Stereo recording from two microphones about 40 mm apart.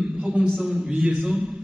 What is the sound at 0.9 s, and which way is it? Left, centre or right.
Speech, right.